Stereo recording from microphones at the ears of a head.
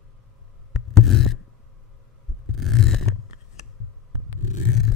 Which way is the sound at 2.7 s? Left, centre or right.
Left.